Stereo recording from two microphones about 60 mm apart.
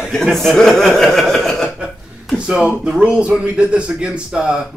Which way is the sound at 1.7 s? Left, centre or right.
Centre.